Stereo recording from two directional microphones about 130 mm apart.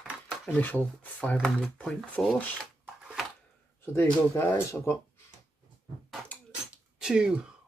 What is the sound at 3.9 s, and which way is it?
Speech, 20° left (ahead or behind).